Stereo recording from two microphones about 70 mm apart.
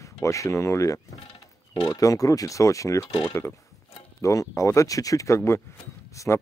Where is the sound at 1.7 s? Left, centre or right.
Left.